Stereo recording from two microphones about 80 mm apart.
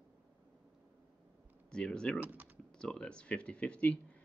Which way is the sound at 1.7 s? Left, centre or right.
Centre.